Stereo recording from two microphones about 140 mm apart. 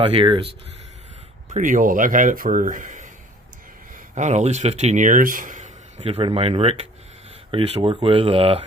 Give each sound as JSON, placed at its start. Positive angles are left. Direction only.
{"t": 0.0, "sound": "speech", "side_deg": -40}
{"t": 1.5, "sound": "speech", "side_deg": -70}
{"t": 6.0, "sound": "speech", "side_deg": -45}